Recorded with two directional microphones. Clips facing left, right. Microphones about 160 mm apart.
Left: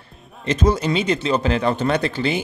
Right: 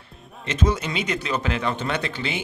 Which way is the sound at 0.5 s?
35° left (ahead or behind).